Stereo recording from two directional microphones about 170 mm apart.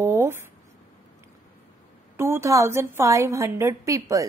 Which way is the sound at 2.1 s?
15° right (ahead or behind).